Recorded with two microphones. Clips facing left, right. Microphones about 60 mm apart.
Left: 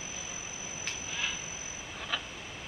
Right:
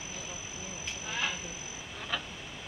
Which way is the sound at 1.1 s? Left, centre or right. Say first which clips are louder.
Right 3 dB; right.